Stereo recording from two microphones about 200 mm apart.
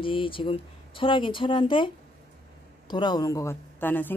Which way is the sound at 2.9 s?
20° left (ahead or behind).